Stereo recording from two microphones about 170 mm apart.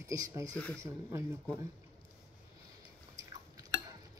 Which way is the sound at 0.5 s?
5° left (ahead or behind).